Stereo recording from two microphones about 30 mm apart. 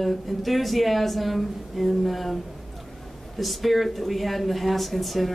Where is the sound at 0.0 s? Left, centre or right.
Centre.